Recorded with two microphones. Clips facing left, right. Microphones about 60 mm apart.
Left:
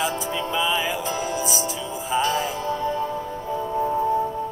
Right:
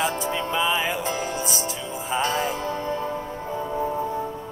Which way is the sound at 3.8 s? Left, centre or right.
Centre.